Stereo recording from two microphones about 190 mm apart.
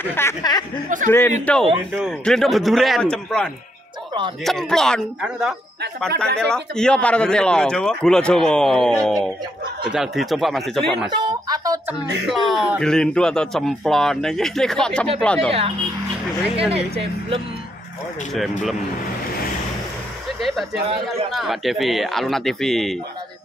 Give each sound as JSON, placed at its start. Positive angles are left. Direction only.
{"t": 0.0, "sound": "speech", "side_deg": 10}
{"t": 0.8, "sound": "a man's voice", "side_deg": -40}
{"t": 1.4, "sound": "speech", "side_deg": 5}
{"t": 4.5, "sound": "speech", "side_deg": 0}
{"t": 11.1, "sound": "a sound", "side_deg": -25}
{"t": 12.3, "sound": "speech", "side_deg": 0}
{"t": 16.5, "sound": "speech", "side_deg": -30}
{"t": 20.3, "sound": "speech", "side_deg": 0}